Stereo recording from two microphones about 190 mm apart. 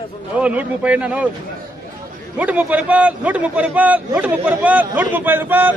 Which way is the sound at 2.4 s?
5° right (ahead or behind).